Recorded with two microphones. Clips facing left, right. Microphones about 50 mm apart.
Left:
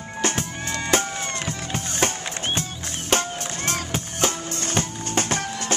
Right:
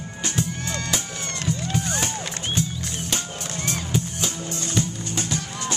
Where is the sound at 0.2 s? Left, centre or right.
Left.